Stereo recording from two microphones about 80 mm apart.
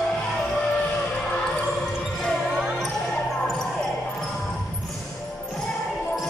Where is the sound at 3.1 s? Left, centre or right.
Centre.